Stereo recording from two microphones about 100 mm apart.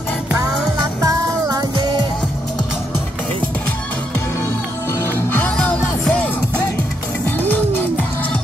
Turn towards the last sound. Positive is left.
turn(degrees=20)  # may be behind; listen again after turning